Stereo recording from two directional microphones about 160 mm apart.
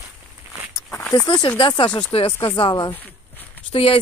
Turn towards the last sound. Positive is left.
turn(degrees=35)  # may be behind; listen again after turning